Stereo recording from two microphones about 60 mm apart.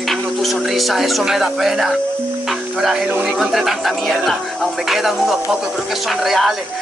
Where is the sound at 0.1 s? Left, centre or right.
Centre.